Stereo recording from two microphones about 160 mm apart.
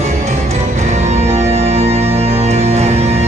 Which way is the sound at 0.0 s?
45° right (ahead or behind).